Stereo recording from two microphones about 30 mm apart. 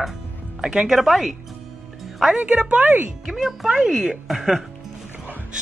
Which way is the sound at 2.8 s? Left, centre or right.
Right.